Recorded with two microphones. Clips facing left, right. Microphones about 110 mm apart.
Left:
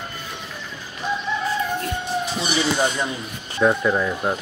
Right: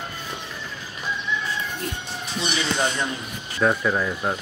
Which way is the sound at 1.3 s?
40° left (ahead or behind).